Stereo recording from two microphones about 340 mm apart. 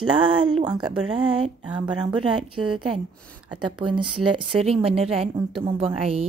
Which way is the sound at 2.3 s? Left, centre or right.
Right.